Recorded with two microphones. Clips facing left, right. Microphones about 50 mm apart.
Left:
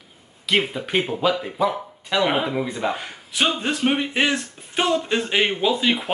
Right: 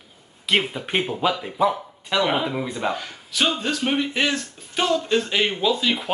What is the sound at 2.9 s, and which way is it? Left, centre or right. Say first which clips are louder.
Speech: even; left.